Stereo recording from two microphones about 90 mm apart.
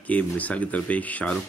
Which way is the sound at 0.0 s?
15° left (ahead or behind).